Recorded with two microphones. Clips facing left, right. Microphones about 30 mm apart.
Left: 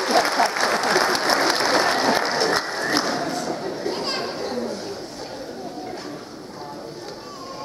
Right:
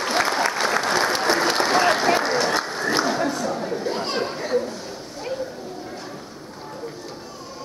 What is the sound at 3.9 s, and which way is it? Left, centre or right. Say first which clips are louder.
Children playing: even; left.